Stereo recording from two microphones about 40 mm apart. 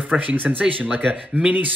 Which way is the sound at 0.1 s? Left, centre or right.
Right.